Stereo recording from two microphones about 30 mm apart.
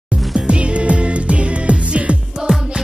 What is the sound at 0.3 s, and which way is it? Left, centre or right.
Music, right.